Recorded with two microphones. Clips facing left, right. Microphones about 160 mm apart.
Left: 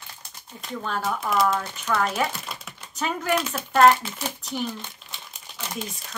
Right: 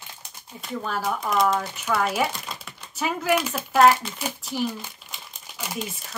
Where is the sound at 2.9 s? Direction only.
5° right (ahead or behind).